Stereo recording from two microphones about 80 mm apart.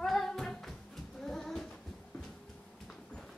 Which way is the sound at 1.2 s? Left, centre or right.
Centre.